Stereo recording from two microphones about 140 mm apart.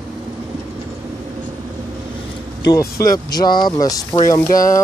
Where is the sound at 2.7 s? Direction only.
25° left (ahead or behind).